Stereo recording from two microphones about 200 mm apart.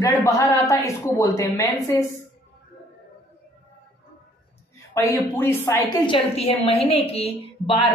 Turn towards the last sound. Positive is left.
turn(degrees=30)  # may be behind; listen again after turning